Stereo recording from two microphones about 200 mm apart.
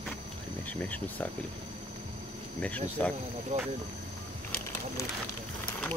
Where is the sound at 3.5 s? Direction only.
40° right (ahead or behind).